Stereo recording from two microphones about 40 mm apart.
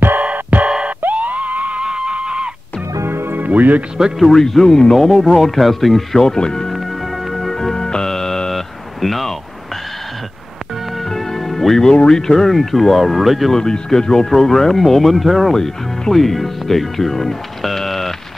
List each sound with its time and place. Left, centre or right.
0.2 s music: right
1.1 s a sound: right
1.8 s music: right
3.1 s music: right
3.4 s speech: right
4.3 s speech: centre
6.2 s speech: centre
6.7 s music: centre
11.0 s music: centre
12.1 s speech: centre
13.5 s speech: centre